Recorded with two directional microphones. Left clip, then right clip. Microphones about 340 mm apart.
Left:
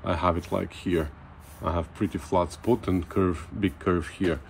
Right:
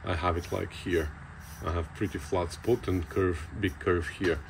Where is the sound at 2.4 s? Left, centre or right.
Left.